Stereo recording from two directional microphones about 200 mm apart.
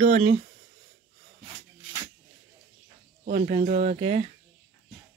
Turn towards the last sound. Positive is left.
turn(degrees=-35)  # may be behind; listen again after turning